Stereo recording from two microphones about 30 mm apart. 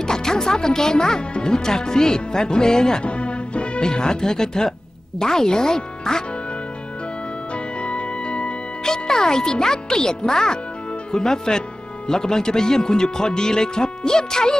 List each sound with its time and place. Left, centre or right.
0.0 s music: left
1.3 s speech: left
1.6 s speech: left
3.0 s music: left
3.8 s speech: left
7.5 s organ: left
8.8 s speech: left